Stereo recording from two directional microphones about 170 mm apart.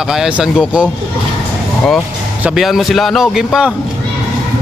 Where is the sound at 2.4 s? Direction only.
Centre (ahead or behind).